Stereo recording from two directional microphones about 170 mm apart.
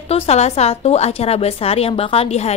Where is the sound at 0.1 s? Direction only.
40° left (ahead or behind).